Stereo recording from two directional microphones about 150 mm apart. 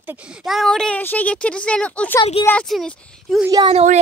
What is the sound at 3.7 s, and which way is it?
Speech, 45° right (ahead or behind).